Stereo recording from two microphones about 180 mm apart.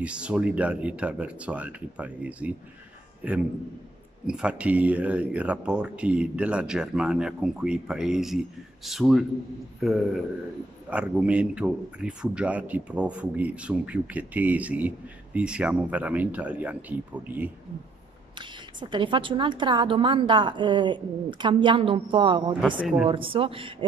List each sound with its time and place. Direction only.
0.0 s a man's voice: 5° right (ahead or behind)
18.4 s a woman's voice: 25° right (ahead or behind)
22.8 s speech: 5° right (ahead or behind)
23.0 s a woman's voice: 30° right (ahead or behind)